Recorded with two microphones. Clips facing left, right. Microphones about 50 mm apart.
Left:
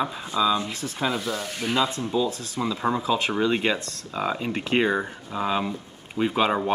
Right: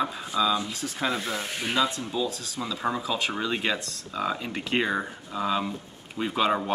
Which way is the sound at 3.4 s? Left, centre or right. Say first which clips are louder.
Left 5 dB; centre.